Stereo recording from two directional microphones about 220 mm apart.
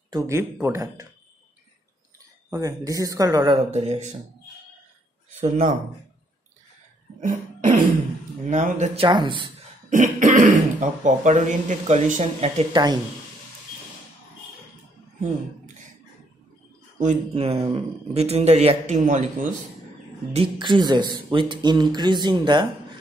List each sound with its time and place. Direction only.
0.1 s speech: 10° right (ahead or behind)
2.1 s speech: 15° right (ahead or behind); by 4.1 s 30° right (ahead or behind)
5.3 s speech: 30° right (ahead or behind)
7.2 s cough: 35° right (ahead or behind)
8.5 s speech: 30° right (ahead or behind)
9.8 s speech: 35° right (ahead or behind); by 13.0 s 20° right (ahead or behind)
17.0 s speech: 30° right (ahead or behind)
20.3 s speech: 20° right (ahead or behind)